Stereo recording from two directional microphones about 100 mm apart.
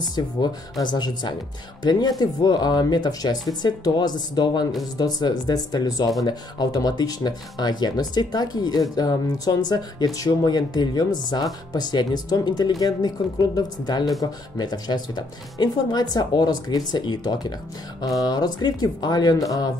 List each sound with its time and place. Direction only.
0.8 s speech: 45° left (ahead or behind)